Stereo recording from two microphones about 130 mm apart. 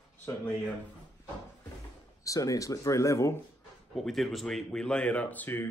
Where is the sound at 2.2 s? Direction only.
25° left (ahead or behind).